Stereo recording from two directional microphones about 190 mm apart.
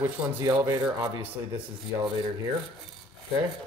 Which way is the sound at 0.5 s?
20° right (ahead or behind).